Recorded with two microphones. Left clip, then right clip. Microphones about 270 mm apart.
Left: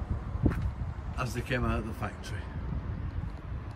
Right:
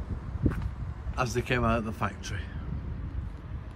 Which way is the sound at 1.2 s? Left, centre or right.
Centre.